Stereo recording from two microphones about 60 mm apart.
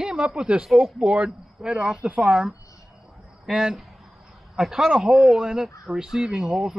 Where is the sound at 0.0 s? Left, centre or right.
Centre.